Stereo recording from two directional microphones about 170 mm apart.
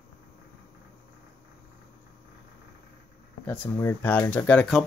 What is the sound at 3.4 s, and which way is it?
Speech, 10° left (ahead or behind).